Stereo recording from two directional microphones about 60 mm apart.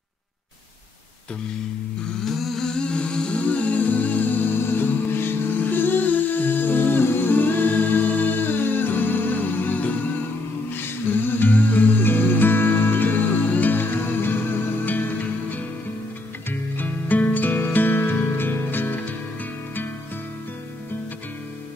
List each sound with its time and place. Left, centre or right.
2.2 s music: centre; by 19.1 s left